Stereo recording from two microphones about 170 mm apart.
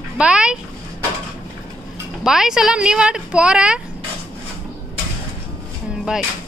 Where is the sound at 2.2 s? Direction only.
5° right (ahead or behind).